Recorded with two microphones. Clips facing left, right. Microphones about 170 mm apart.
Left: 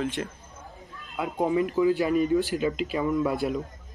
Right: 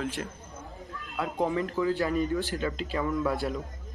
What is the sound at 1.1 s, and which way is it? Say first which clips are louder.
Speech: left 3 dB; 15° left (ahead or behind).